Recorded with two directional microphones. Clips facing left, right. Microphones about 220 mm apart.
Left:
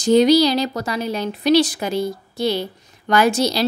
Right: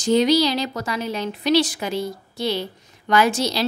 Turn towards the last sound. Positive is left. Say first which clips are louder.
# left 2 dB
turn(degrees=40)  # may be behind; listen again after turning